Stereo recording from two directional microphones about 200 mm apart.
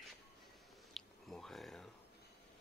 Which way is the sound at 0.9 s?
Centre (ahead or behind).